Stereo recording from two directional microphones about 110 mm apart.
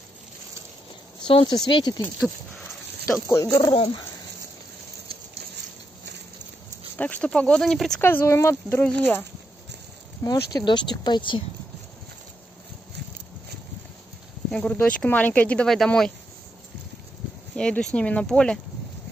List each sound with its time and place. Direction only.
1.2 s speech: 50° left (ahead or behind)
2.0 s speech: 10° left (ahead or behind)
3.1 s speech: 25° left (ahead or behind)
3.7 s speech: 55° left (ahead or behind)
7.0 s speech: 10° left (ahead or behind)
8.0 s speech: 20° left (ahead or behind)
10.2 s speech: 35° left (ahead or behind)
10.6 s speech: 45° left (ahead or behind)
14.5 s speech: 10° left (ahead or behind)
17.6 s speech: 10° left (ahead or behind)